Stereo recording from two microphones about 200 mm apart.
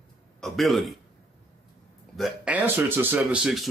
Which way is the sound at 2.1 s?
5° right (ahead or behind).